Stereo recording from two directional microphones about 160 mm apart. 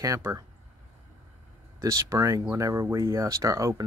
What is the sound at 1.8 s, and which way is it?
Speech, 20° right (ahead or behind).